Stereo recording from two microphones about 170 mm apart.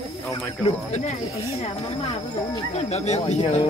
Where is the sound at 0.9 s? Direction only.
45° left (ahead or behind).